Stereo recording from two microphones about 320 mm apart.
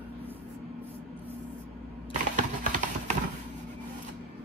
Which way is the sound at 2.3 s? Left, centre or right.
Right.